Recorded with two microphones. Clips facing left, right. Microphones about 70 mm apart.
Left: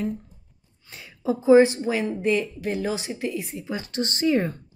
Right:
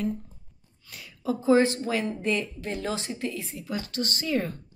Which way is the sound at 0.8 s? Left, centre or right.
Left.